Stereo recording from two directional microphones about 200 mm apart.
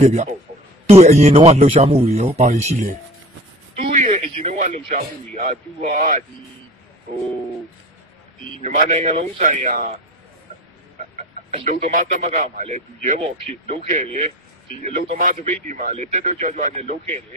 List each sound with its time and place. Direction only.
0.0 s a man's voice: 35° right (ahead or behind)
8.6 s a man's voice: 40° right (ahead or behind)
11.1 s a sound: 35° right (ahead or behind)
11.8 s a man's voice: 35° right (ahead or behind)